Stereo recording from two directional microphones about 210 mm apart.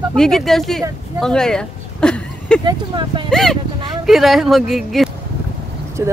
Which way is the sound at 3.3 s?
Centre (ahead or behind).